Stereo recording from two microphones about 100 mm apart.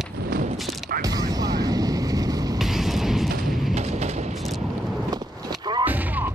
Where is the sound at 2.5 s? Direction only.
5° right (ahead or behind).